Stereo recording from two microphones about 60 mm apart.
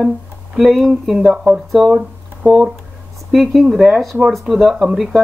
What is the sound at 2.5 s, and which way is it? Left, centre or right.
Speech, centre.